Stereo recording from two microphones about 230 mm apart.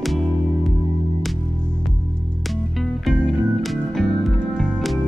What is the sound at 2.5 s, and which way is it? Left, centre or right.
Music, centre.